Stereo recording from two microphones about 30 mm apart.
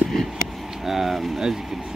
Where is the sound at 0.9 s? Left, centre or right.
Centre.